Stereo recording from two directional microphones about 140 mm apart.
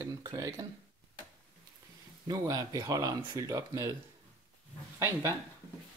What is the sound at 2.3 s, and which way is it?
Speech, 25° right (ahead or behind).